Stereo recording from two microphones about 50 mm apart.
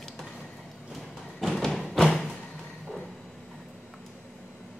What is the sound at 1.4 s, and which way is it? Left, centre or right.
Thump, centre.